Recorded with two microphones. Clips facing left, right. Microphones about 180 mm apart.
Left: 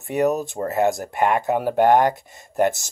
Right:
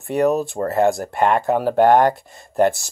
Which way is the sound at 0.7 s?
50° right (ahead or behind).